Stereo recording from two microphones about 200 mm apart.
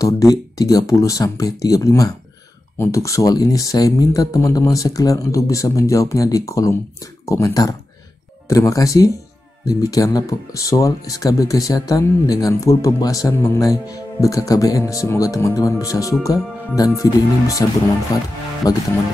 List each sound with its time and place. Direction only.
0.0 s speech: 15° left (ahead or behind)